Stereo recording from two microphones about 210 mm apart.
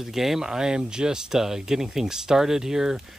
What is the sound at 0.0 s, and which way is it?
Speech, centre (ahead or behind).